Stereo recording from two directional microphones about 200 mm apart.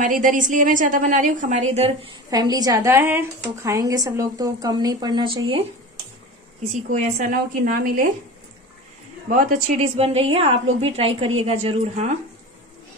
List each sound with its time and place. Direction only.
0.0 s a woman's voice: 40° right (ahead or behind)
9.3 s a woman's voice: 40° right (ahead or behind)